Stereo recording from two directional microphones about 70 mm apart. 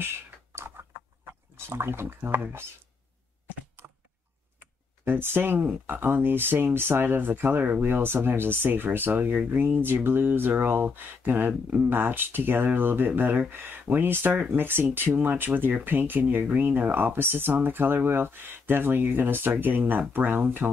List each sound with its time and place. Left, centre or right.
0.6 s typing: right
1.7 s speech: right
5.0 s speech: right